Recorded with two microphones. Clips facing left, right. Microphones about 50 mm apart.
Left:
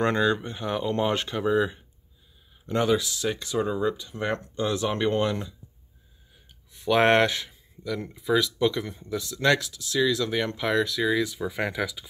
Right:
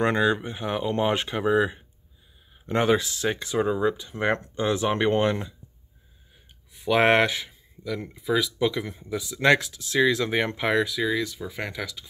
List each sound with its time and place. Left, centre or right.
0.0 s speech: centre; by 5.5 s right
6.7 s speech: centre
11.1 s speech: centre